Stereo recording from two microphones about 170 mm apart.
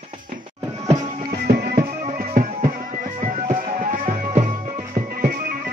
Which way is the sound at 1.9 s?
45° right (ahead or behind).